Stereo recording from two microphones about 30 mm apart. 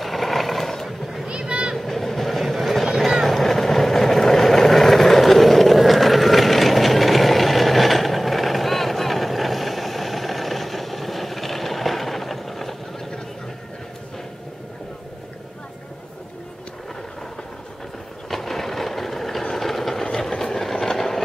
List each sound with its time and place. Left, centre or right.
0.0 s mechanisms: centre
1.4 s vehicle: right
1.8 s vehicle: centre
18.3 s vehicle: centre
20.1 s vehicle: centre